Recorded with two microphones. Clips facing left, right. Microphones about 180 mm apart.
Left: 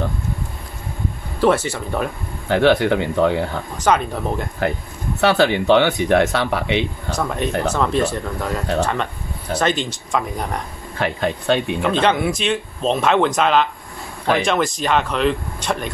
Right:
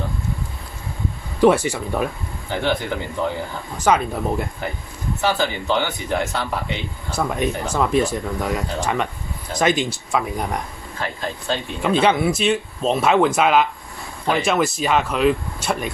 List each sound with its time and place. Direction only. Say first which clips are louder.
1.4 s speech: right 2 dB; 10° right (ahead or behind)
2.4 s speech: left 8 dB; 70° left (ahead or behind)
3.7 s speech: even; 10° right (ahead or behind)
5.2 s speech: left 6 dB; 75° left (ahead or behind)
7.2 s speech: even; 10° right (ahead or behind)
11.0 s speech: left 6 dB; 65° left (ahead or behind)
11.8 s speech: even; 10° right (ahead or behind)